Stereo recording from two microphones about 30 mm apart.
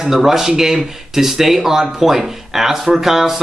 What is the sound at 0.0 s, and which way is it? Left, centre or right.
A man's voice, centre.